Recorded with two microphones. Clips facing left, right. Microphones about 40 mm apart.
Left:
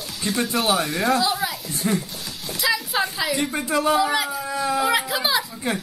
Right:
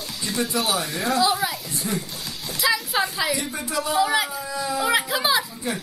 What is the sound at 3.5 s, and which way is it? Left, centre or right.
Speech, left.